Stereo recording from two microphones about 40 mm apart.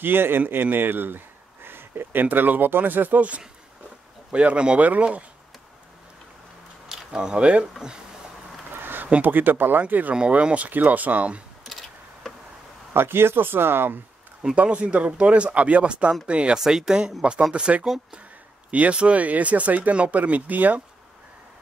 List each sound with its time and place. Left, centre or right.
0.0 s a man's voice: right
2.2 s speech: right
4.3 s speech: right
7.1 s speech: right
8.8 s a sound: right
9.2 s speech: right
10.4 s speech: right
10.7 s speech: right
11.6 s a sound: centre
12.9 s speech: right
14.5 s speech: right
16.5 s speech: centre; by 20.8 s right